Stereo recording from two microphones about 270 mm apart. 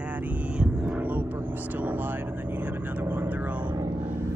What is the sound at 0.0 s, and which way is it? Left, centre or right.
Vehicle, centre.